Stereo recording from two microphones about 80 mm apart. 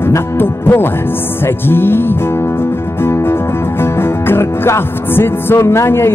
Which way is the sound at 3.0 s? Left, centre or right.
Left.